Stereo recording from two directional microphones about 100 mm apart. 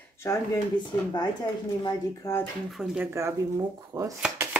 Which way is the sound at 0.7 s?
50° left (ahead or behind).